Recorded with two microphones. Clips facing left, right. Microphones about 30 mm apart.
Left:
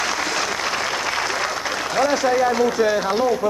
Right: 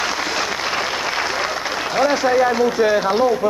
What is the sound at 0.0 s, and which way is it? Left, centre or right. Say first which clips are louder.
Applause: right 1 dB; centre.